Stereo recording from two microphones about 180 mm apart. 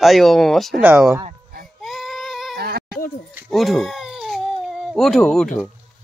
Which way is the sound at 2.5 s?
60° right (ahead or behind).